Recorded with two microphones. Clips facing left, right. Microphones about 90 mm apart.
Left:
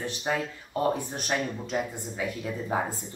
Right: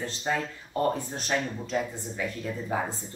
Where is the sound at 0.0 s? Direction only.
15° left (ahead or behind).